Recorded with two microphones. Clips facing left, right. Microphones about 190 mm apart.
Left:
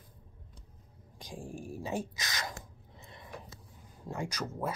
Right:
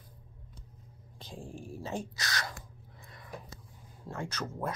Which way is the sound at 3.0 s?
25° left (ahead or behind).